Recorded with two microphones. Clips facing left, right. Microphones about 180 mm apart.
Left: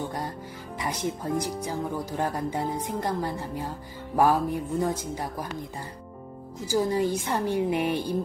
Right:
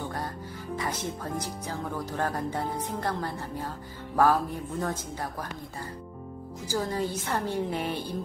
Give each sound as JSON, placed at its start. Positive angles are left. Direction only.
{"t": 0.7, "sound": "speech", "side_deg": 15}
{"t": 6.7, "sound": "speech", "side_deg": 10}